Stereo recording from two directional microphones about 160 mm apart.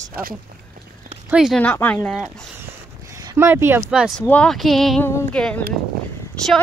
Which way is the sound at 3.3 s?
15° right (ahead or behind).